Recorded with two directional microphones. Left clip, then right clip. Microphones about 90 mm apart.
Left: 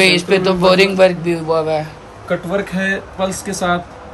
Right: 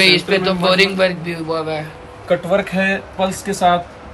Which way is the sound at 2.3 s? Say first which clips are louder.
Right 3 dB; 80° right.